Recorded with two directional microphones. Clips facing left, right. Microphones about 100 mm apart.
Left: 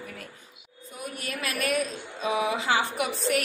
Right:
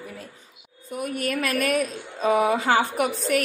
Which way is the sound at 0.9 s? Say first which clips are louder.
Right 9 dB; 55° right (ahead or behind).